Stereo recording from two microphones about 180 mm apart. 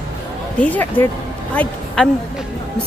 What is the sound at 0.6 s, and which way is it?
A woman's voice, 10° left (ahead or behind).